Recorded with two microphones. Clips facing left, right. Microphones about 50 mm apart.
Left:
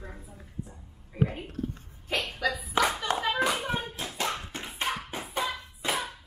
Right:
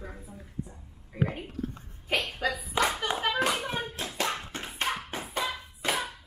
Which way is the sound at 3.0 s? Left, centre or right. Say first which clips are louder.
Even; centre.